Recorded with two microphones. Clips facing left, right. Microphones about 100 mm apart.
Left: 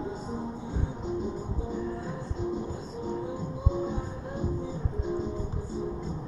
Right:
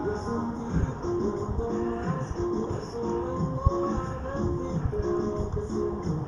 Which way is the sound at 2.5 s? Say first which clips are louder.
Right 4 dB; 10° left (ahead or behind).